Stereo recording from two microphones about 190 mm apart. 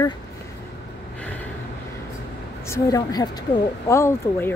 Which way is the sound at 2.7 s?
20° left (ahead or behind).